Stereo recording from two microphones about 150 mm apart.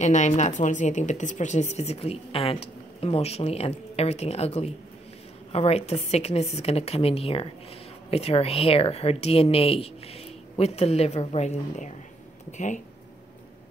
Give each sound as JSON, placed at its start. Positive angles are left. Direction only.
{"t": 0.0, "sound": "speech", "side_deg": 55}